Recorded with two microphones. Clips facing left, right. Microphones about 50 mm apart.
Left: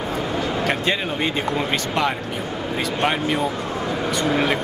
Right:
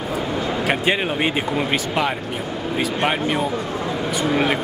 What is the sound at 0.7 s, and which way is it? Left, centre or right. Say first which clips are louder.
Speech: right 2 dB; centre.